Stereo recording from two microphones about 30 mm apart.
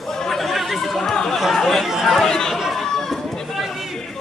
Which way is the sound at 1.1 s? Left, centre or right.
Left.